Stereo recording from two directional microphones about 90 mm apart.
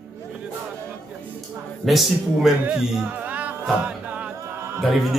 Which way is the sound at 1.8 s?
Centre (ahead or behind).